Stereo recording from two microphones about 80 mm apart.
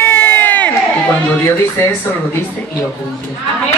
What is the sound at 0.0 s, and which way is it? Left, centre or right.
Crowd, left.